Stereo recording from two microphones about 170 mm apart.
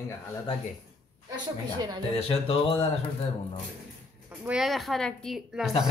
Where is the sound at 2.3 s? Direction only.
35° left (ahead or behind).